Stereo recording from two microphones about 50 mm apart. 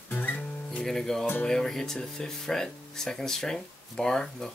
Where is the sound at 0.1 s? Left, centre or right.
Left.